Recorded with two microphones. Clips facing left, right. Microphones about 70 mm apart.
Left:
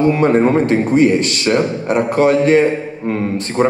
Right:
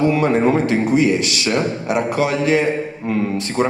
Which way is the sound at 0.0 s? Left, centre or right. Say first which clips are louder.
Left 3 dB; left.